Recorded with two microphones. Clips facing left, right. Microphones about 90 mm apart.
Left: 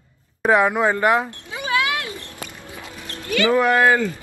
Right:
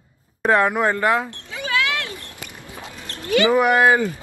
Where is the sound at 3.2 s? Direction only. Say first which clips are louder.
Right 1 dB; 20° right (ahead or behind).